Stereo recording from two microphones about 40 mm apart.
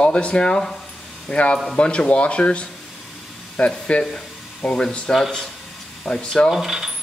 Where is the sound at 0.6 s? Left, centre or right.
Centre.